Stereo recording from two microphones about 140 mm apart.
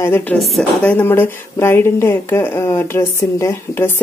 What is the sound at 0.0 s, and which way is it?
Speech, 15° left (ahead or behind).